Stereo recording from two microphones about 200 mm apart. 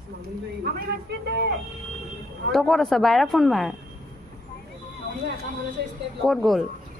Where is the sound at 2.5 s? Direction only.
Centre (ahead or behind).